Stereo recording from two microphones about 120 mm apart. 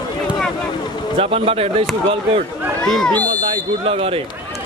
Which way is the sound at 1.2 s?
55° right (ahead or behind).